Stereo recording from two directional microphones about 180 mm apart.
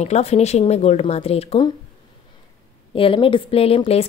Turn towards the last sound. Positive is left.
turn(degrees=35)  # may be behind; listen again after turning